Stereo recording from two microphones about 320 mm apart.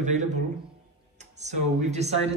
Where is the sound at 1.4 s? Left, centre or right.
Right.